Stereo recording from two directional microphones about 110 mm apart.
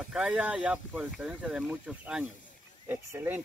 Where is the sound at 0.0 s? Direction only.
5° right (ahead or behind).